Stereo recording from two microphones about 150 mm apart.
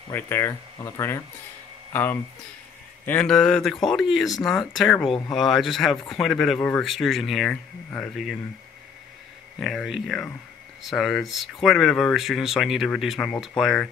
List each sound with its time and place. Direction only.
0.1 s speech: 15° left (ahead or behind)
9.6 s speech: centre (ahead or behind)